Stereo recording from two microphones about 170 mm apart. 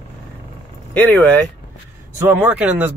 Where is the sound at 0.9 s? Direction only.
10° left (ahead or behind).